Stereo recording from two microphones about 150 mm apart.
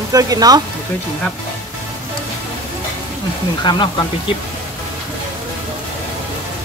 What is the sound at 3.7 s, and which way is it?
Speech, 30° left (ahead or behind).